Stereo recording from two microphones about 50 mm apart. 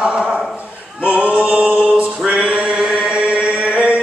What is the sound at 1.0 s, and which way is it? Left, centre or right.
Music, right.